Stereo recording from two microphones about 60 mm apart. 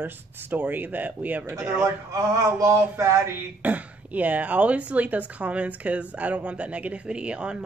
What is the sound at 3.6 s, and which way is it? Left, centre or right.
A woman's voice, right.